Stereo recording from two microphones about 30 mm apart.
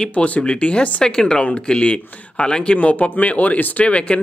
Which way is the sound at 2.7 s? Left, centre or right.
Left.